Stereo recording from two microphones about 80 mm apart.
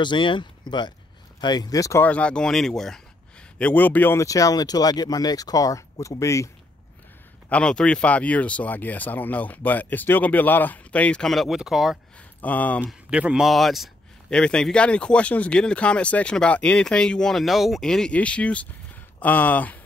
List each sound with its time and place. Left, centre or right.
0.0 s speech: left
1.4 s speech: left
2.0 s speech: centre
3.5 s speech: centre
4.2 s speech: left
7.4 s speech: centre
11.2 s speech: centre
12.4 s speech: centre
12.8 s speech: centre
13.5 s speech: centre
14.3 s speech: centre